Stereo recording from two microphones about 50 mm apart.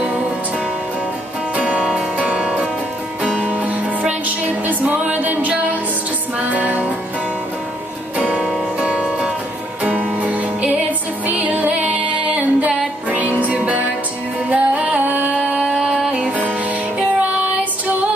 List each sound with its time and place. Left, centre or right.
1.6 s music: right
3.3 s music: right
6.5 s music: right
8.7 s music: right
15.3 s a sound: right
15.6 s music: centre
16.1 s music: right
17.2 s child singing: right